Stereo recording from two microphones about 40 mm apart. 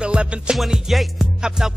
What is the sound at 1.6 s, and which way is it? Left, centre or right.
Music, centre.